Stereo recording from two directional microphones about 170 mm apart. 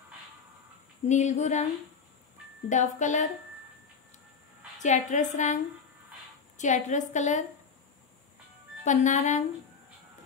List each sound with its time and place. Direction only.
1.0 s a woman's voice: 45° left (ahead or behind)
2.7 s a woman's voice: 45° left (ahead or behind)
4.7 s a woman's voice: 45° left (ahead or behind)
6.6 s a woman's voice: 45° left (ahead or behind)
8.8 s a woman's voice: 45° left (ahead or behind)